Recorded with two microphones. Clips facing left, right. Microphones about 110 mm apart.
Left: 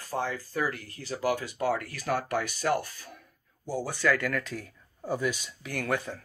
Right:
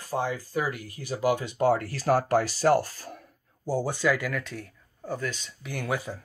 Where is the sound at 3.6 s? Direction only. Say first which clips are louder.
Right 3 dB; 25° right (ahead or behind).